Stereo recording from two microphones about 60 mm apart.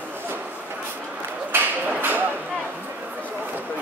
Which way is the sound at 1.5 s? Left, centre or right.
Right.